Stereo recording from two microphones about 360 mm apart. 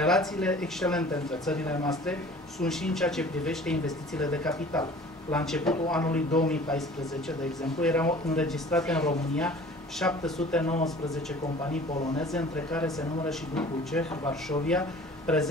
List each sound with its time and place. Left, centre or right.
0.0 s speech: centre
7.8 s speech: centre